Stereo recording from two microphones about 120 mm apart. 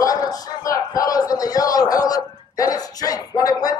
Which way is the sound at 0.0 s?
30° left (ahead or behind).